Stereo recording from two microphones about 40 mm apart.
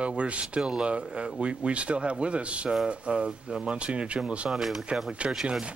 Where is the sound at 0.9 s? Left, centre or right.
Right.